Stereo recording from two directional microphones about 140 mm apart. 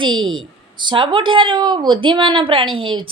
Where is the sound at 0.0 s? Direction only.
35° right (ahead or behind).